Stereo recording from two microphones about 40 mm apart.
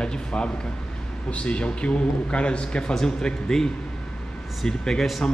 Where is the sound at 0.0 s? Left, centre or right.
Left.